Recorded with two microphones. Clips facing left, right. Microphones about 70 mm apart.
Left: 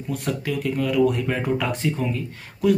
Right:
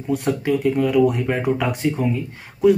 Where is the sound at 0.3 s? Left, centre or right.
Right.